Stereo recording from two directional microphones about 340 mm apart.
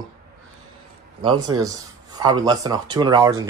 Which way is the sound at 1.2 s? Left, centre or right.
Centre.